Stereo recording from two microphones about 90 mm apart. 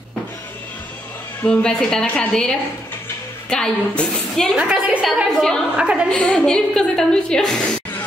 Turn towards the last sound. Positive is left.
turn(degrees=5)  # may be behind; listen again after turning